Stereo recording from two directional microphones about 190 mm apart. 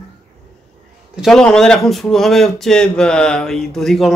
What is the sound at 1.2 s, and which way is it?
Speech, 5° left (ahead or behind).